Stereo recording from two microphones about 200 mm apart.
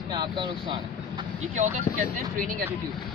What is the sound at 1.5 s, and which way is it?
Speech, 35° right (ahead or behind).